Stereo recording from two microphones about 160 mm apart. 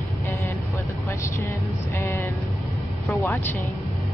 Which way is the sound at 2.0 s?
15° left (ahead or behind).